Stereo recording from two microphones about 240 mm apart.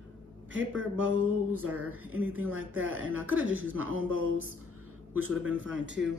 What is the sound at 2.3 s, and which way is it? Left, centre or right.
Speech, right.